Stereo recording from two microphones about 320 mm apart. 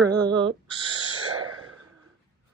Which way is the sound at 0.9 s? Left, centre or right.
Right.